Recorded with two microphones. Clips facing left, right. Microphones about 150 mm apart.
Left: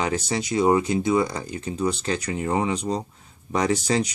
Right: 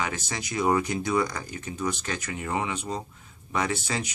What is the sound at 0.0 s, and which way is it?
Speech, 30° left (ahead or behind).